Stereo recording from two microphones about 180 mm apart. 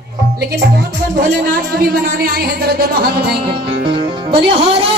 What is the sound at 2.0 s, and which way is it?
Speech, 60° right (ahead or behind).